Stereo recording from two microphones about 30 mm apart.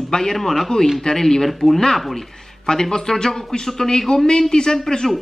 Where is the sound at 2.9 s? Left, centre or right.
Left.